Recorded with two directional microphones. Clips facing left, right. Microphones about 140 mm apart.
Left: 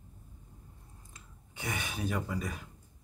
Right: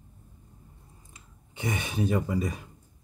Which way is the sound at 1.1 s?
20° right (ahead or behind).